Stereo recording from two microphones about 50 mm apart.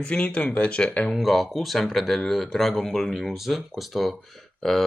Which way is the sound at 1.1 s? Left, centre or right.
Centre.